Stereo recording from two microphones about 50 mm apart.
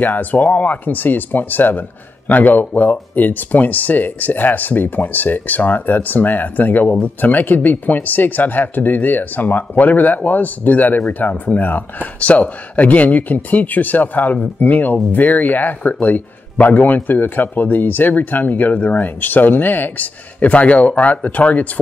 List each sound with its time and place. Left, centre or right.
0.0 s speech: left